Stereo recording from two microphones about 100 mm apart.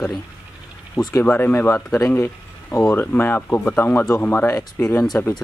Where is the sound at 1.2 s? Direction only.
20° left (ahead or behind).